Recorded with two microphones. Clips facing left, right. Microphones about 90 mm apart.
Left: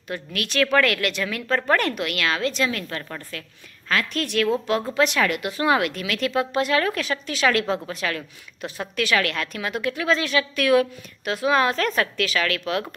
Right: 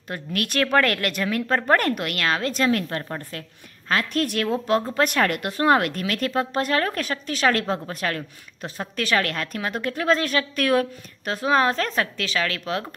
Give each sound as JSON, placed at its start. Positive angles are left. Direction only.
{"t": 0.1, "sound": "a woman's voice", "side_deg": -45}